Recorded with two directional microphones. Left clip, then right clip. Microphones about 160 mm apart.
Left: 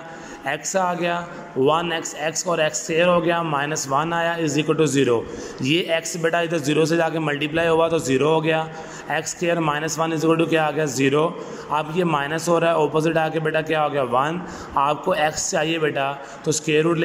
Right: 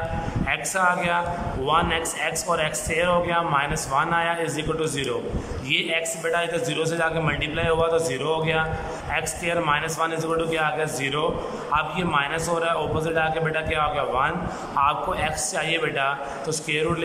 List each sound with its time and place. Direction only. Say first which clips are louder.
0.5 s a man's voice: even; 30° left (ahead or behind)